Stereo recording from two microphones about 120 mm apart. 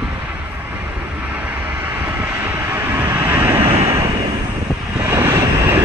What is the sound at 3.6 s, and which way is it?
Vehicle, 55° right (ahead or behind).